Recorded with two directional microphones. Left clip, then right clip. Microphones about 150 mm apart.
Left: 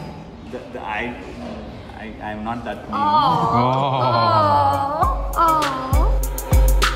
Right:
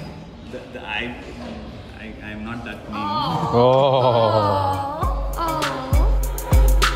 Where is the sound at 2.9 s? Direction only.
20° left (ahead or behind).